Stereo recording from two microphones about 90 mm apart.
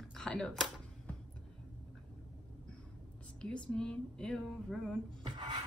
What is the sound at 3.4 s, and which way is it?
A woman's voice, 10° left (ahead or behind).